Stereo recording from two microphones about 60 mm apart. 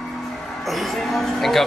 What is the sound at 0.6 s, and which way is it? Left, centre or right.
A man's voice, centre.